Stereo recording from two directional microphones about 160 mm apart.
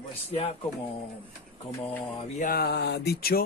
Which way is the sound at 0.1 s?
35° left (ahead or behind).